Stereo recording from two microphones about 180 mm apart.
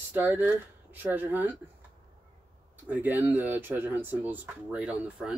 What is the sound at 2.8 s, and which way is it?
Speech, 10° right (ahead or behind).